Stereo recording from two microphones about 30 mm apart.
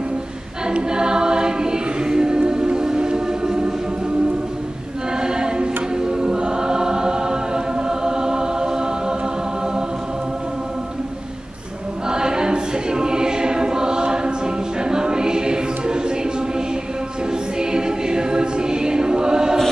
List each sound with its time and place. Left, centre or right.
0.8 s choir: right
3.0 s music: right
5.2 s choir: right
12.1 s choir: right
17.3 s music: right